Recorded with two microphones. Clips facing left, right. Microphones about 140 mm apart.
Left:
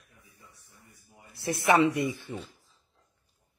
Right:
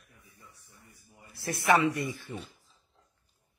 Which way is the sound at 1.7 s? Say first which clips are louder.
Left 2 dB; 25° left (ahead or behind).